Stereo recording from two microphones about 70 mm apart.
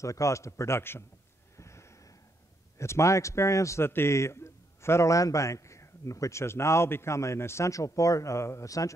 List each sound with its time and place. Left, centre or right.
0.0 s a man's voice: left
1.6 s a sound: left
2.8 s a man's voice: left